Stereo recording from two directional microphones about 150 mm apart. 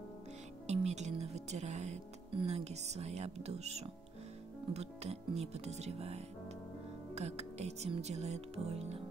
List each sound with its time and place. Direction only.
0.7 s music: 50° right (ahead or behind)
2.3 s speech: 45° right (ahead or behind)